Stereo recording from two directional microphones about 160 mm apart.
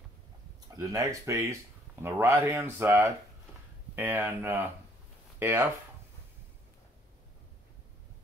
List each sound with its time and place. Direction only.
0.7 s speech: 20° right (ahead or behind)